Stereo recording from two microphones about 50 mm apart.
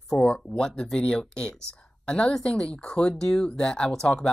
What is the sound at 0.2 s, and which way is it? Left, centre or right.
A woman's voice, centre.